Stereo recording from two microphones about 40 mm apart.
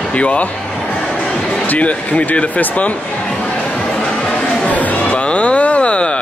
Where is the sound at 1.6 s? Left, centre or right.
Left.